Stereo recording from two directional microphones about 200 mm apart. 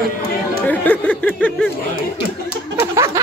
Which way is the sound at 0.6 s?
10° left (ahead or behind).